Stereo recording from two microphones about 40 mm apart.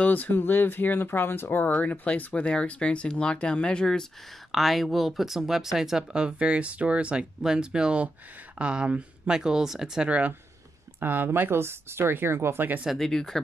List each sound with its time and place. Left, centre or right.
0.0 s speech: left
2.0 s speech: left
4.5 s speech: centre
6.1 s speech: right
7.4 s speech: centre
9.3 s speech: centre
10.0 s speech: right
11.0 s speech: right
12.9 s speech: centre